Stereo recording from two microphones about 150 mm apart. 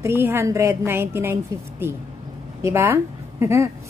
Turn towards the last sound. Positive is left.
turn(degrees=-20)  # may be behind; listen again after turning